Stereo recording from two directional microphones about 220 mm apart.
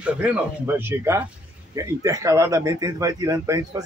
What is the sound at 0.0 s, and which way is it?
Speech, 5° right (ahead or behind).